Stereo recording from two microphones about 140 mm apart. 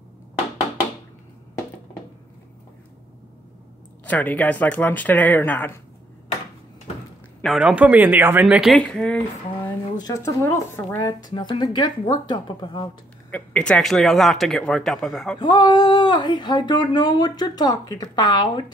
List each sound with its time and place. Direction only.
4.0 s speech: 10° left (ahead or behind)
7.4 s speech: centre (ahead or behind)
7.7 s speech: 10° right (ahead or behind); by 9.2 s 5° left (ahead or behind)
9.9 s speech: 25° left (ahead or behind)
11.3 s speech: 35° left (ahead or behind)
13.3 s speech: 10° left (ahead or behind)
15.3 s speech: 35° left (ahead or behind)